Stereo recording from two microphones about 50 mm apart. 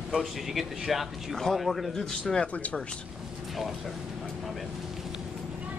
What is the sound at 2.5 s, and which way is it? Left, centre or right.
Speech, left.